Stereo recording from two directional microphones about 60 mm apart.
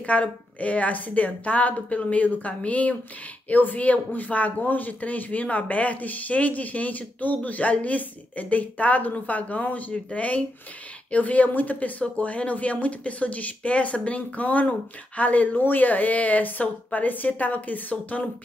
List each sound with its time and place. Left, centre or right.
0.0 s speech: left